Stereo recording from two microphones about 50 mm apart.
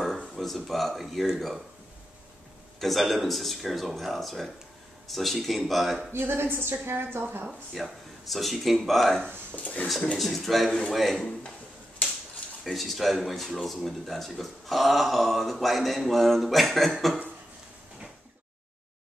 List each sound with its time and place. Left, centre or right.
0.3 s a sound: centre
0.7 s speech: centre
2.8 s speech: centre
6.1 s a woman's voice: right
7.7 s speech: centre
9.5 s speech: left
10.1 s speech: centre
12.6 s speech: centre